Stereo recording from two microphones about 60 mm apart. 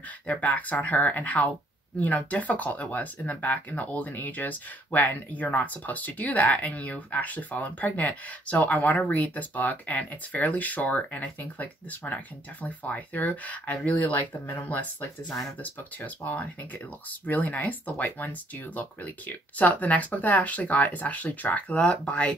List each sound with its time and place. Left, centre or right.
0.3 s speech: left
17.3 s speech: left